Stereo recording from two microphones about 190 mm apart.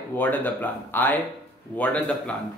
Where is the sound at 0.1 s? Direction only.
10° left (ahead or behind).